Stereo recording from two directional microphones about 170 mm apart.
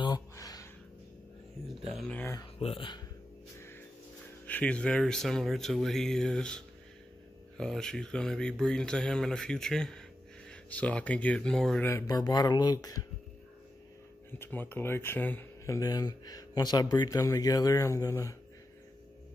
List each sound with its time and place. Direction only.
0.0 s a sound: 25° left (ahead or behind)
2.0 s speech: 5° left (ahead or behind)
2.6 s speech: 30° left (ahead or behind)
4.5 s speech: 10° left (ahead or behind)
11.9 s speech: 20° left (ahead or behind)
14.4 s speech: 10° left (ahead or behind)